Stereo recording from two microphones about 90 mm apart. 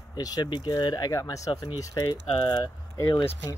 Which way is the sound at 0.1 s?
45° left (ahead or behind).